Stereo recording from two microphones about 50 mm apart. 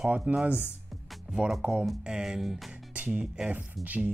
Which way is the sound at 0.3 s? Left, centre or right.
Right.